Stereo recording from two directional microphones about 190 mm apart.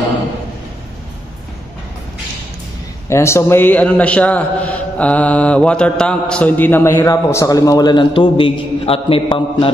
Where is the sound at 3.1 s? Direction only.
15° left (ahead or behind).